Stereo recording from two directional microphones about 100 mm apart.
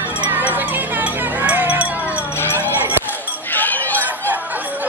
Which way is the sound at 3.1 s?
20° left (ahead or behind).